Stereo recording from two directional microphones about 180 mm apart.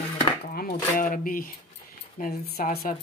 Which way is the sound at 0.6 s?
50° left (ahead or behind).